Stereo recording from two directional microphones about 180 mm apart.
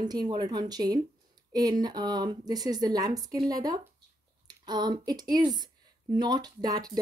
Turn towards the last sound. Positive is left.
turn(degrees=-20)  # may be behind; listen again after turning